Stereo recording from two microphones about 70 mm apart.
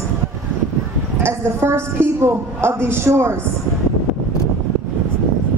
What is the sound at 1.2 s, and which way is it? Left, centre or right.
A woman's voice, right.